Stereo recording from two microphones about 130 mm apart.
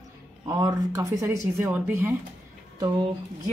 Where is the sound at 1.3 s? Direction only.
15° right (ahead or behind).